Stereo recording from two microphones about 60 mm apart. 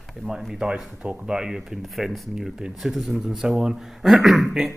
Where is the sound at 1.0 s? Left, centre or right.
Centre.